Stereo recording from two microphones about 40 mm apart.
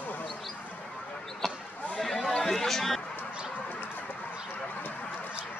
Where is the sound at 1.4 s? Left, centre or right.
Centre.